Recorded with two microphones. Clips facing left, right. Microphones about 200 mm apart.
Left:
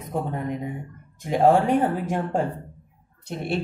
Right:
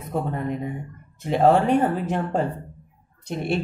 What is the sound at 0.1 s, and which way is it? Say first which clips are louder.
Speech: right 1 dB; 15° left (ahead or behind).